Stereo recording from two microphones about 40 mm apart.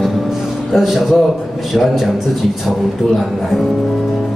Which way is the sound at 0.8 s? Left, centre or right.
Centre.